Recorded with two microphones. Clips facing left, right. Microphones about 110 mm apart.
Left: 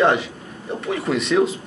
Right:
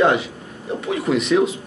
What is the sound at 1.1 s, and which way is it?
Speech, 10° right (ahead or behind).